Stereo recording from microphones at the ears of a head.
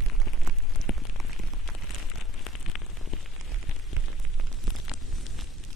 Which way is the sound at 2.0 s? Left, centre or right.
Left.